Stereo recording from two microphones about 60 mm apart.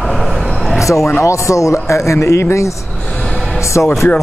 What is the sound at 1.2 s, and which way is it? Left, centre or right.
A man's voice, left.